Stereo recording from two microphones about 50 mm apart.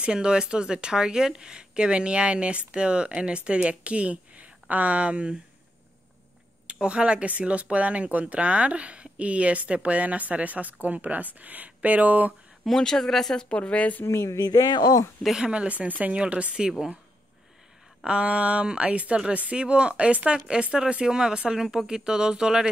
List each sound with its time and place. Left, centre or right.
0.0 s speech: centre
6.7 s speech: right
12.6 s speech: centre
13.5 s a woman's voice: left
14.0 s a sound: left
15.3 s speech: centre
18.0 s speech: right